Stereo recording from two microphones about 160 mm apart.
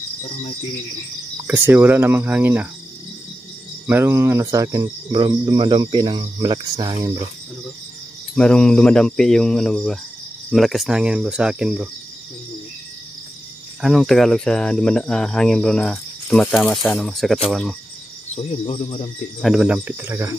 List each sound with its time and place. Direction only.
1.5 s speech: 15° right (ahead or behind)
3.8 s cricket: 15° right (ahead or behind)
8.4 s speech: 5° left (ahead or behind)
13.7 s speech: centre (ahead or behind)
18.3 s cricket: 40° left (ahead or behind)
19.4 s speech: 5° right (ahead or behind)